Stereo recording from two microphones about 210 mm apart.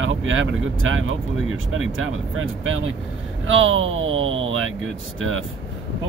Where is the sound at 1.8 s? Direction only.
75° right (ahead or behind).